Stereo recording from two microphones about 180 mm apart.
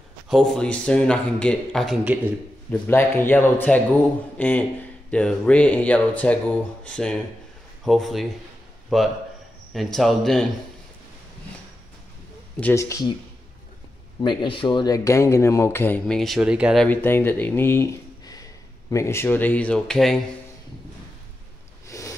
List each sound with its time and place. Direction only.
0.3 s a man's voice: centre (ahead or behind)
2.7 s a man's voice: 10° left (ahead or behind)
12.5 s speech: 10° left (ahead or behind)
14.2 s speech: 25° left (ahead or behind); by 16.8 s 5° right (ahead or behind)
16.8 s speech: 10° left (ahead or behind)
21.8 s a sound: 15° left (ahead or behind)